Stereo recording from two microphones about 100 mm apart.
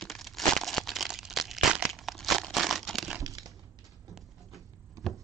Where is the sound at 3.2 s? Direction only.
35° right (ahead or behind).